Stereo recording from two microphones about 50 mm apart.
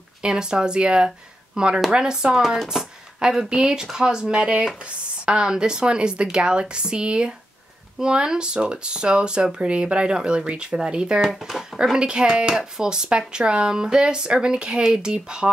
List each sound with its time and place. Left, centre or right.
0.2 s speech: centre
11.1 s speech: centre